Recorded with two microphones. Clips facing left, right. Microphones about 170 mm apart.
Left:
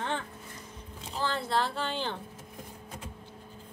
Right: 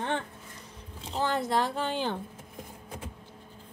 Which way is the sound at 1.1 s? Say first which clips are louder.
Right 3 dB; 15° right (ahead or behind).